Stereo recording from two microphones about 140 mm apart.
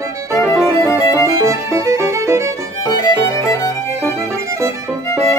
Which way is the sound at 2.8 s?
30° left (ahead or behind).